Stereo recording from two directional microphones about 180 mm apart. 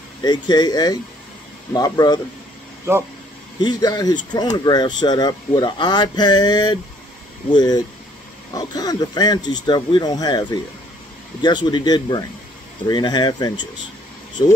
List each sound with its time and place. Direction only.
0.2 s speech: 25° left (ahead or behind)
3.6 s speech: 25° left (ahead or behind)